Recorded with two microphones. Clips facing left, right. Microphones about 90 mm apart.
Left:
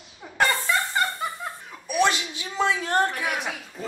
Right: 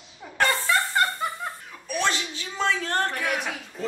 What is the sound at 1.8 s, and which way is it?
Speech, 15° left (ahead or behind).